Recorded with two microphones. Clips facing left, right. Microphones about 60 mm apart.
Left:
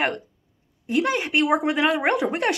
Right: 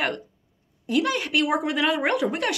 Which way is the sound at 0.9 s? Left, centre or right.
Left.